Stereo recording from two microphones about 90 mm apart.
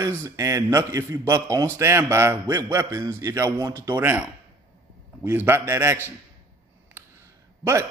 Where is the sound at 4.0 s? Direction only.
25° right (ahead or behind).